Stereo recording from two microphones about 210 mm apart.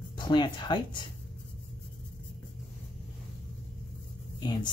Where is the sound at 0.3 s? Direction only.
20° left (ahead or behind).